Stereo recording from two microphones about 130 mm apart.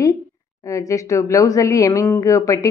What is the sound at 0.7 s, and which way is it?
A woman's voice, 25° left (ahead or behind).